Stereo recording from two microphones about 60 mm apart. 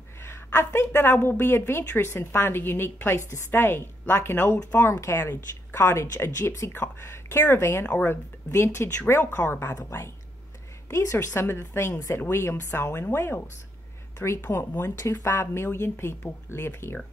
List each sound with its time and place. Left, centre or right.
0.2 s a woman's voice: left
3.2 s speech: left
3.5 s a woman's voice: left
7.8 s speech: left
8.1 s a woman's voice: left
10.9 s a woman's voice: left
11.1 s a woman's voice: left
11.9 s speech: left
12.2 s a woman's voice: left
14.1 s speech: left